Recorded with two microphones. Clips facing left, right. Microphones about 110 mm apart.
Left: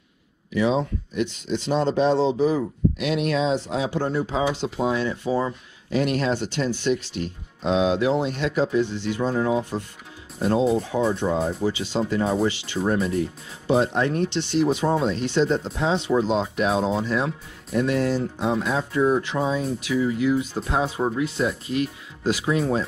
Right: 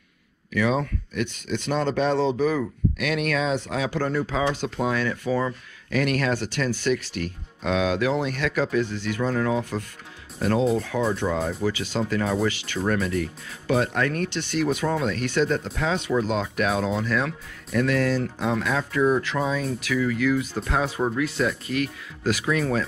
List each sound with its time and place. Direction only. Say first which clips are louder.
0.5 s speech: left 2 dB; 25° left (ahead or behind)